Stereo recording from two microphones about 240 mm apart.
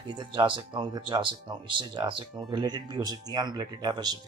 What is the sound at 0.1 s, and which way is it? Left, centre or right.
Speech, centre.